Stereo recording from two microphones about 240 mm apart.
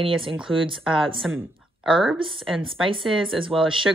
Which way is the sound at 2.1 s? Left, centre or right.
Right.